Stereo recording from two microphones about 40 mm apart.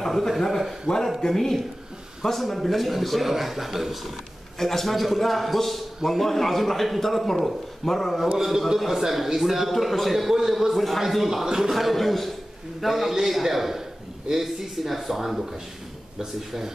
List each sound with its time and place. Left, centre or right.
0.0 s a sound: centre
0.3 s a man's voice: centre
0.9 s speech: left
1.2 s a man's voice: centre
4.6 s a man's voice: centre
8.4 s a man's voice: centre
11.7 s a man's voice: centre